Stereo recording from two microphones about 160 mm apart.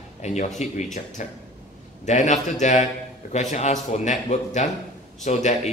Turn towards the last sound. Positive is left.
turn(degrees=50)  # may be behind; listen again after turning